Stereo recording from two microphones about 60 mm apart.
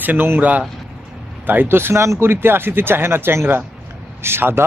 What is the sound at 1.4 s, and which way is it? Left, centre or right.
Speech, right.